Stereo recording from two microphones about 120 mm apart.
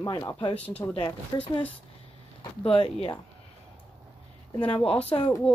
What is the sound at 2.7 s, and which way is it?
Speech, 55° left (ahead or behind).